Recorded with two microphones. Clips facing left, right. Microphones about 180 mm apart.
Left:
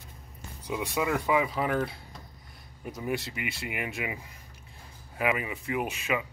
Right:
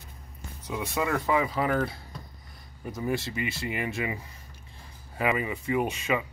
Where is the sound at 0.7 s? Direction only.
10° left (ahead or behind).